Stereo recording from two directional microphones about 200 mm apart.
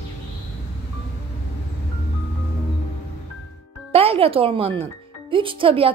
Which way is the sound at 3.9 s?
30° right (ahead or behind).